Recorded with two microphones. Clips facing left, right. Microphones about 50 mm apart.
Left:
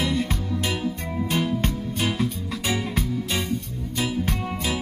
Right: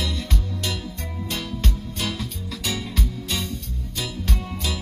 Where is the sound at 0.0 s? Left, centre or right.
Left.